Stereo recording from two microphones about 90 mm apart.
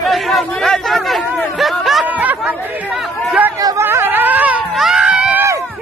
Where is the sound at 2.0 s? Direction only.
20° right (ahead or behind).